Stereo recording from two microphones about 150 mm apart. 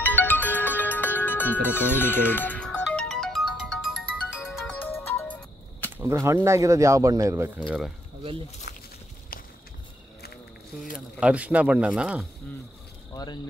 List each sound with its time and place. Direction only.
0.0 s music: 10° left (ahead or behind)
4.7 s ringtone: 15° left (ahead or behind)
5.9 s speech: 20° right (ahead or behind)
11.1 s speech: 5° right (ahead or behind)
13.1 s speech: 25° left (ahead or behind)